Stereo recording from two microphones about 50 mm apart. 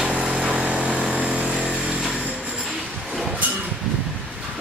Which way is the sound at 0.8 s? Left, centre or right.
Centre.